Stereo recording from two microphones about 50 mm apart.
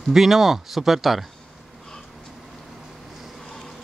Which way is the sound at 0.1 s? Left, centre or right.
Centre.